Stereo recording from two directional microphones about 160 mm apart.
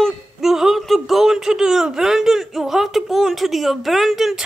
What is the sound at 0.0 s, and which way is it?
Speech, centre (ahead or behind).